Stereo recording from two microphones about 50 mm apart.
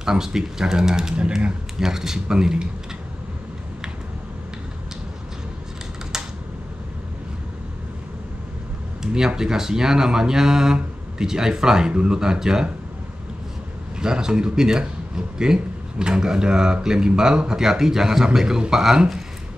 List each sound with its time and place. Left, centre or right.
0.0 s a man's voice: centre
1.1 s speech: right
1.8 s a man's voice: centre
9.0 s a man's voice: centre
13.9 s a man's voice: centre